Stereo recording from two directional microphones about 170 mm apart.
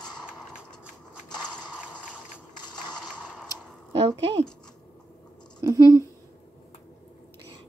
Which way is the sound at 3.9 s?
30° right (ahead or behind).